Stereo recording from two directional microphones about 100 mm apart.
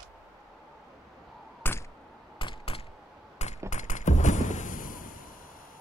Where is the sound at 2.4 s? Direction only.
65° left (ahead or behind).